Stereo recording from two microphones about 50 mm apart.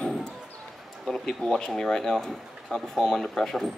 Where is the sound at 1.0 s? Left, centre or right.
Centre.